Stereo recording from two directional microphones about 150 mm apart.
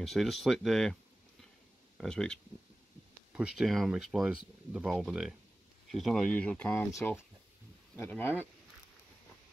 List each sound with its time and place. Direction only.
0.0 s speech: centre (ahead or behind)
2.0 s speech: 5° left (ahead or behind)